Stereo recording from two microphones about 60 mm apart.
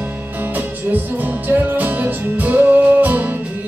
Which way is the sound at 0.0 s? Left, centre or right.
Right.